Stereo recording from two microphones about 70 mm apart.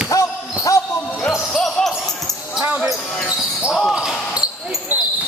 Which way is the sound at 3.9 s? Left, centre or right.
Centre.